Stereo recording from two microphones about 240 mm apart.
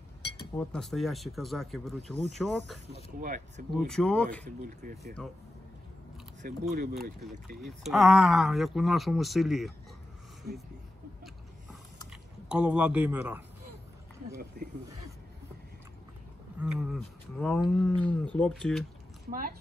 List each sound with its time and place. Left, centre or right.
0.6 s speech: centre
2.9 s speech: right
3.8 s speech: centre
4.5 s speech: right
6.7 s speech: right
7.0 s speech: centre
12.4 s speech: centre
16.5 s speech: centre